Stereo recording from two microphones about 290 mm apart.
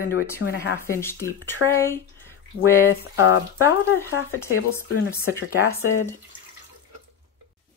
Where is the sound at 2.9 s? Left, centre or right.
Left.